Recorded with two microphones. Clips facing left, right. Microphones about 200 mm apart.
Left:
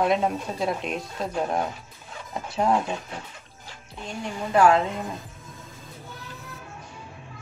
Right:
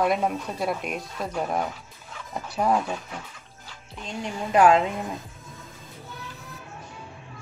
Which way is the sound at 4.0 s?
20° right (ahead or behind).